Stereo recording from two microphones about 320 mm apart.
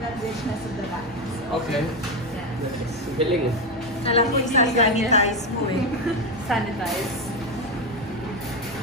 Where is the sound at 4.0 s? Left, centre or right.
Centre.